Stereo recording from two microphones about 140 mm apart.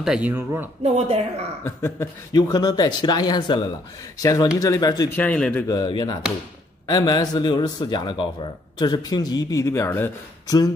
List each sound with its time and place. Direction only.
0.0 s speech: 5° right (ahead or behind)
0.3 s speech: 15° right (ahead or behind)
0.8 s a woman's voice: 45° right (ahead or behind)
1.6 s speech: 20° left (ahead or behind)
5.1 s speech: 10° left (ahead or behind)
5.7 s speech: 30° left (ahead or behind)
10.4 s speech: 25° left (ahead or behind)